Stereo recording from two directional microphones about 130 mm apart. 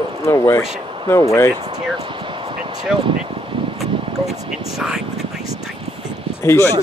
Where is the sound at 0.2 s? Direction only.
20° left (ahead or behind).